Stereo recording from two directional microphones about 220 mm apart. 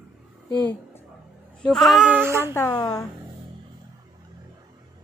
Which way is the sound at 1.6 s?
Centre (ahead or behind).